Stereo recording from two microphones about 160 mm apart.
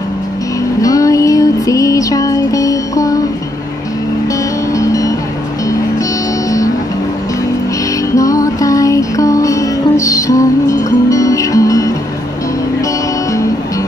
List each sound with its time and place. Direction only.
0.7 s music: 20° left (ahead or behind)
4.7 s music: 20° left (ahead or behind)
8.1 s music: 20° left (ahead or behind)